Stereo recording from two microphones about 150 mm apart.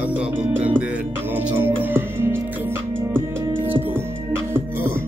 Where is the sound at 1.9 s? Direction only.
15° right (ahead or behind).